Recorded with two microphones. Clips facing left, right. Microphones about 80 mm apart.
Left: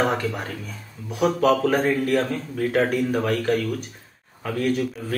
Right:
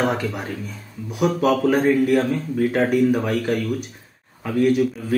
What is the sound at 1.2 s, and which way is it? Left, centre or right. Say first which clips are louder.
Speech: right 1 dB; centre.